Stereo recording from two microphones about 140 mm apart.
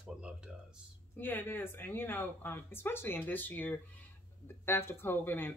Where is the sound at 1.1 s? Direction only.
15° left (ahead or behind).